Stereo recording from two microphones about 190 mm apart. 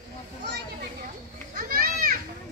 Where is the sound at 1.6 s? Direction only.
50° right (ahead or behind).